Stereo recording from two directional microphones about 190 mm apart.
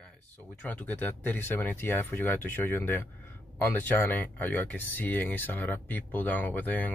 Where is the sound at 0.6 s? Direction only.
10° left (ahead or behind).